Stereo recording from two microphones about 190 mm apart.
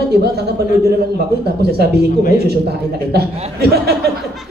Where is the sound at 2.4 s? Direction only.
60° right (ahead or behind).